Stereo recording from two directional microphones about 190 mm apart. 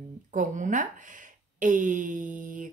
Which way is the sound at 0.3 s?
40° right (ahead or behind).